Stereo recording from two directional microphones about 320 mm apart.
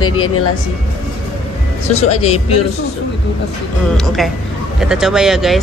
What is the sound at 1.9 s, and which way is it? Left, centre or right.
Speech, centre.